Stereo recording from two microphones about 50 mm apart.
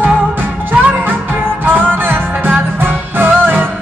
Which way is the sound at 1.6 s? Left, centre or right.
Right.